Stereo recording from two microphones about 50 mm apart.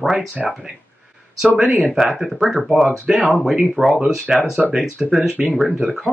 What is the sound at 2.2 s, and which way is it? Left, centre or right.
Speech, centre.